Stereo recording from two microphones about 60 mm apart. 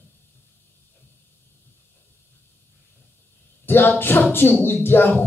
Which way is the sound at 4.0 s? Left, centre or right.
Left.